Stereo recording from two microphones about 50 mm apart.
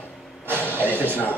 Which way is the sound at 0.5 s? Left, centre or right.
Left.